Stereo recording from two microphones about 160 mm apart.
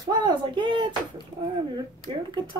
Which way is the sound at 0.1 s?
30° right (ahead or behind).